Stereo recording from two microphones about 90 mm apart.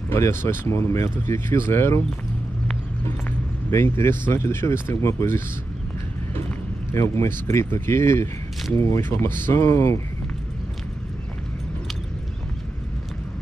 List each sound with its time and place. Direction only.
0.1 s speech: 25° left (ahead or behind)
3.7 s speech: 30° left (ahead or behind)
6.9 s speech: 30° left (ahead or behind)